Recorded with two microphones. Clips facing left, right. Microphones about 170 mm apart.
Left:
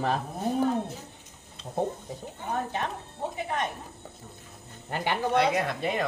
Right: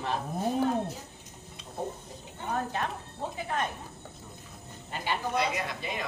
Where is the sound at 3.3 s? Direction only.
20° left (ahead or behind).